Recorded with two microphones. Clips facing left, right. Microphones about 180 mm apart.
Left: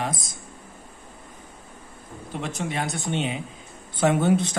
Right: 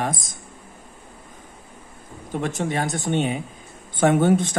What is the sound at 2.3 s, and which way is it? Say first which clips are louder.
Speech: right 5 dB; 45° right (ahead or behind).